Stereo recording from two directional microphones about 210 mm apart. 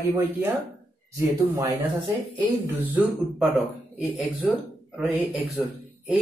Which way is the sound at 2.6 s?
10° right (ahead or behind).